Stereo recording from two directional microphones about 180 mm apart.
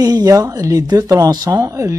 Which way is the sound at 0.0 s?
20° right (ahead or behind).